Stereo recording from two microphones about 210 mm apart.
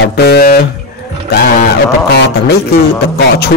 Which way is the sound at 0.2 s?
50° left (ahead or behind).